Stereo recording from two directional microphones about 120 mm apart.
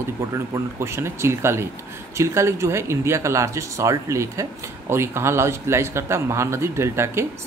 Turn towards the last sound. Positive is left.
turn(degrees=-20)  # may be behind; listen again after turning